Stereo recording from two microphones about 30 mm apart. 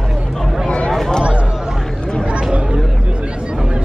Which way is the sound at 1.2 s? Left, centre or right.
Right.